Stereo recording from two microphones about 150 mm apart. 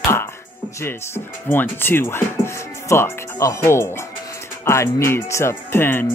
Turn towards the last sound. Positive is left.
turn(degrees=15)  # may be behind; listen again after turning